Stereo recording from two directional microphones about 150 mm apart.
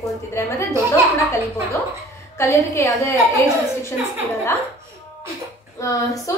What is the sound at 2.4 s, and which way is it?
A woman's voice, 20° left (ahead or behind).